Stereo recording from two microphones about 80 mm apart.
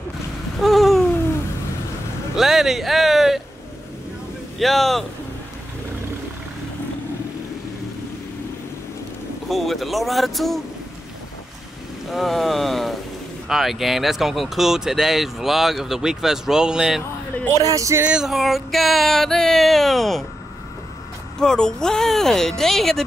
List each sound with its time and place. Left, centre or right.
0.6 s babbling: centre
2.3 s speech: centre
4.6 s speech: centre
9.5 s speech: centre
12.1 s speech: centre
17.6 s music: right
18.0 s speech: centre
21.4 s speech: centre